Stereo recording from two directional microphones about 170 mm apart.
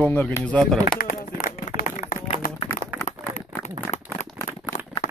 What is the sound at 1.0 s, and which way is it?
Run, 50° left (ahead or behind).